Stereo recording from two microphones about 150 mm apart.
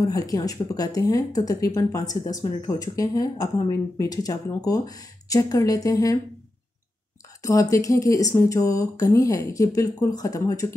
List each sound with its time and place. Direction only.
0.0 s speech: 25° left (ahead or behind)
7.4 s speech: 20° left (ahead or behind)